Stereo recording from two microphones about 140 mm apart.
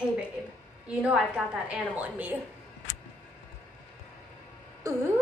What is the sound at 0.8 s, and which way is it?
A woman's voice, 5° right (ahead or behind).